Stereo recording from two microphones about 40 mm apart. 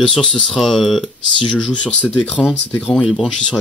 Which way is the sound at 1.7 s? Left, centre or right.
Left.